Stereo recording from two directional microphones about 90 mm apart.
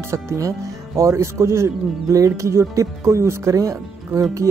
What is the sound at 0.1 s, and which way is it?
Speech, 35° right (ahead or behind).